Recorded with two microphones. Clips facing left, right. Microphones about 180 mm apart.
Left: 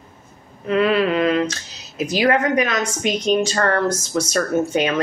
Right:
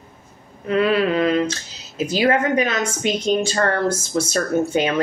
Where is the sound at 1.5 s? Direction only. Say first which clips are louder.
Right 2 dB; 30° right (ahead or behind).